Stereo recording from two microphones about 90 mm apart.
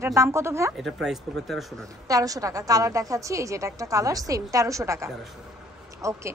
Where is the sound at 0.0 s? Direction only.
30° right (ahead or behind).